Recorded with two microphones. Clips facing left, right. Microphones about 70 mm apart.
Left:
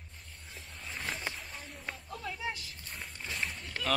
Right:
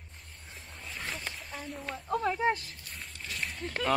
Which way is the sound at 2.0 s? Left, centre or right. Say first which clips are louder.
Right 12 dB; right.